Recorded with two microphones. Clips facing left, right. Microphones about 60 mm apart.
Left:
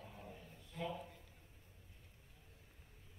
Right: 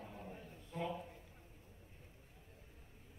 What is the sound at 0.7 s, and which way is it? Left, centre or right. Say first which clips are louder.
Speech: right 2 dB; right.